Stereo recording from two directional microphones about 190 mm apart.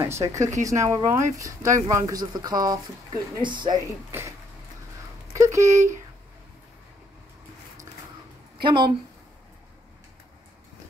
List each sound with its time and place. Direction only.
0.0 s a woman's voice: 15° right (ahead or behind)
4.1 s speech: 10° right (ahead or behind)
5.3 s speech: 15° right (ahead or behind)
8.6 s a woman's voice: 25° right (ahead or behind)